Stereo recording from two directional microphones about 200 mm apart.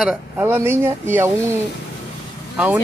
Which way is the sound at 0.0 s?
10° right (ahead or behind).